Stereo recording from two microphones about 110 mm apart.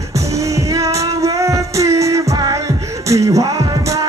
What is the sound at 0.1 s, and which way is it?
Music, 30° right (ahead or behind).